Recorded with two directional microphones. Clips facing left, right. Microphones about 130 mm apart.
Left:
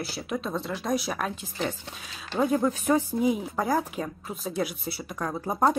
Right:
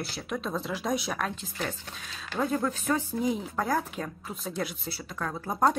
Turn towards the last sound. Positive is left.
turn(degrees=15)  # may be behind; listen again after turning